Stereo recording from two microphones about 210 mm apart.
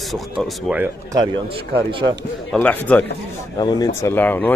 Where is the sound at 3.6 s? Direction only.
20° left (ahead or behind).